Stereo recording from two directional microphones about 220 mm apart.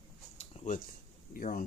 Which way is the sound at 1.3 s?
40° left (ahead or behind).